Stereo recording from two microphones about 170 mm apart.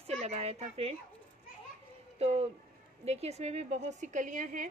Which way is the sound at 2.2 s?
35° right (ahead or behind).